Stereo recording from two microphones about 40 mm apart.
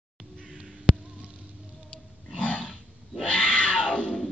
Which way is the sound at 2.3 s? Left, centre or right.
Left.